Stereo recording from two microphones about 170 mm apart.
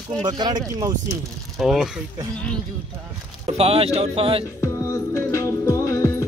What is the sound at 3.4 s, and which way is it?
Speech, 35° right (ahead or behind).